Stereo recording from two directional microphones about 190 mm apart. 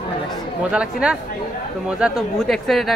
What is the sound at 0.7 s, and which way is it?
Speech, 5° right (ahead or behind).